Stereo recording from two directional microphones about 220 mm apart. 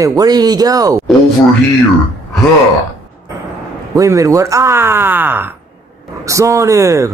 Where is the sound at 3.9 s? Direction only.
15° right (ahead or behind).